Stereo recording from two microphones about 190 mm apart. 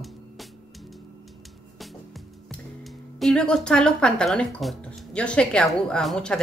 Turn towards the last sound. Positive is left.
turn(degrees=5)  # may be behind; listen again after turning